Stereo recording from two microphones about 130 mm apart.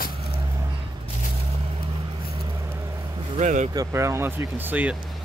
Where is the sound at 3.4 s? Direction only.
65° right (ahead or behind).